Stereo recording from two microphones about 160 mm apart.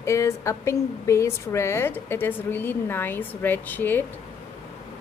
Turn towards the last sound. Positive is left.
turn(degrees=10)  # may be behind; listen again after turning